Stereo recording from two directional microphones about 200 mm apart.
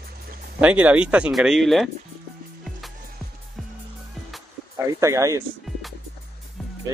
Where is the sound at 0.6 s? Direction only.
5° right (ahead or behind).